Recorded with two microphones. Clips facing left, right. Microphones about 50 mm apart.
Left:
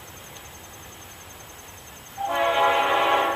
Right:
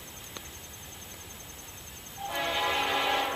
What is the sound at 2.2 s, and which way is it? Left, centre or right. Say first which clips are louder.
Train: left 10 dB; left.